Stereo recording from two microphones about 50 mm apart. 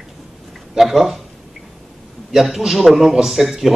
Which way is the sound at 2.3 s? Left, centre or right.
Centre.